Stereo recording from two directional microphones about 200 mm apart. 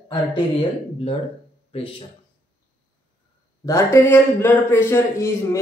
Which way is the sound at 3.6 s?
15° left (ahead or behind).